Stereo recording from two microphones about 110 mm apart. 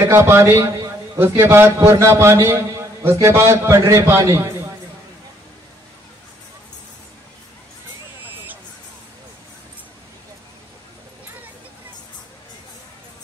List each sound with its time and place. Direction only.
0.0 s a man's voice: 25° right (ahead or behind)